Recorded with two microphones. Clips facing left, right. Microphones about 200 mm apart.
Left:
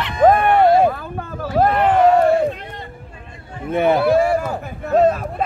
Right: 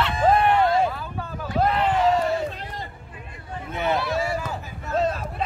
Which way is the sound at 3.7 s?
55° left (ahead or behind).